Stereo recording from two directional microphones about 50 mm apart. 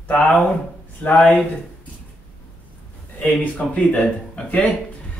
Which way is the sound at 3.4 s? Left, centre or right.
Left.